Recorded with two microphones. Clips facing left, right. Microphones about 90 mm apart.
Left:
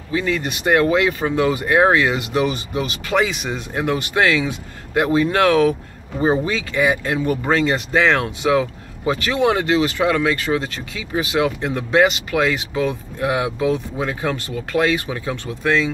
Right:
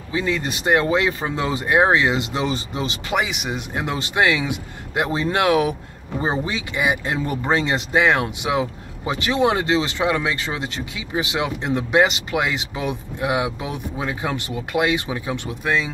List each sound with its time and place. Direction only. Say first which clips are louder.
0.1 s speech: left 2 dB; 20° right (ahead or behind)